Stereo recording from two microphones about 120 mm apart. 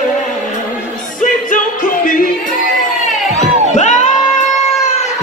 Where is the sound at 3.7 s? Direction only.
80° left.